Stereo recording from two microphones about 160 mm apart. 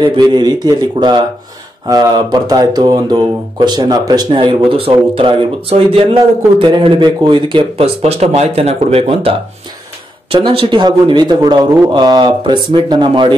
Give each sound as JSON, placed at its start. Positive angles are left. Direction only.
{"t": 0.0, "sound": "speech", "side_deg": -30}
{"t": 10.3, "sound": "speech", "side_deg": -35}